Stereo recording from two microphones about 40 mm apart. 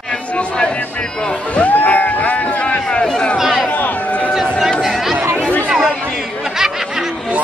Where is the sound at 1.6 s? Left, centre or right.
Left.